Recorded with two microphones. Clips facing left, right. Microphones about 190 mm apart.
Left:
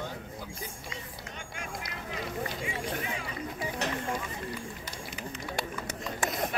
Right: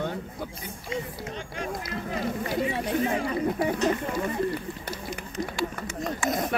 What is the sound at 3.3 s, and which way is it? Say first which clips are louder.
Speech: right 10 dB; 60° right (ahead or behind).